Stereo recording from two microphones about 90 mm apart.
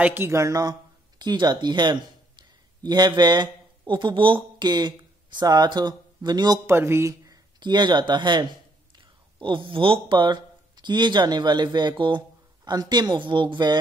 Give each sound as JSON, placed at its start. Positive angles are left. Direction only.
{"t": 0.0, "sound": "speech", "side_deg": -25}
{"t": 6.6, "sound": "speech", "side_deg": -30}
{"t": 7.6, "sound": "speech", "side_deg": -55}
{"t": 12.6, "sound": "speech", "side_deg": -50}